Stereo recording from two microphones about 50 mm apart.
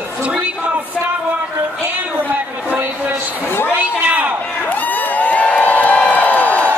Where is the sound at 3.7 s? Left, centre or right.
Right.